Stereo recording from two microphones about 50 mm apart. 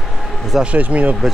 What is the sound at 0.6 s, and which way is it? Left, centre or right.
Speech, right.